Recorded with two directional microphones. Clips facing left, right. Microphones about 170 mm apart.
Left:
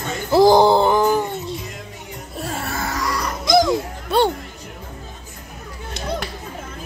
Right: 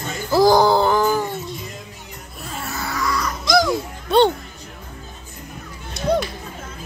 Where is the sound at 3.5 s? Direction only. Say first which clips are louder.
Left 2 dB; 20° left (ahead or behind).